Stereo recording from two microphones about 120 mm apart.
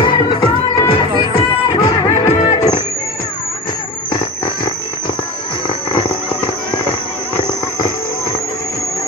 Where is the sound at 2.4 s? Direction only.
30° left (ahead or behind).